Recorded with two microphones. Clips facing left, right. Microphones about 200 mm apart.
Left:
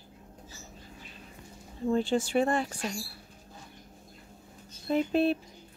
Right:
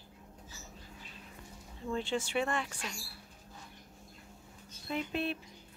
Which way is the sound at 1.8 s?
35° left (ahead or behind).